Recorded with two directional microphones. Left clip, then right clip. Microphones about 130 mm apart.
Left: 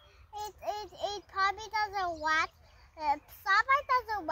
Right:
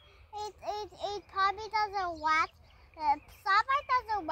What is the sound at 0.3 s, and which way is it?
Child singing, 10° left (ahead or behind).